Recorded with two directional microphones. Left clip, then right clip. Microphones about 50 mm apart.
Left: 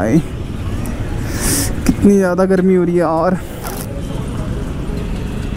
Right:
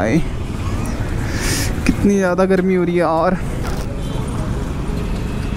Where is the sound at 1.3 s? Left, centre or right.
Left.